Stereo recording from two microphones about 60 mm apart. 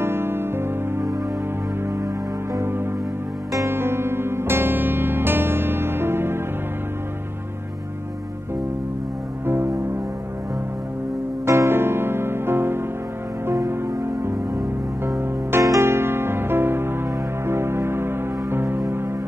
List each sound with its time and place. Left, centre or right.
0.0 s music: right
2.6 s music: right
11.4 s music: right